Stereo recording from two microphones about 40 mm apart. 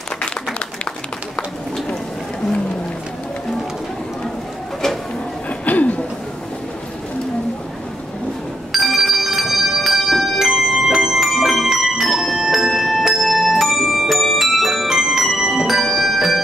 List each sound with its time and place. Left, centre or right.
5.7 s a sound: left
8.7 s bell: centre
14.9 s music: centre